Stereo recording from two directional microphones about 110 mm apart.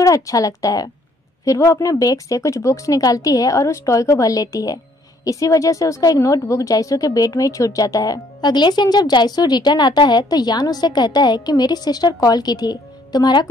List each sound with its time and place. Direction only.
0.0 s a woman's voice: 30° left (ahead or behind)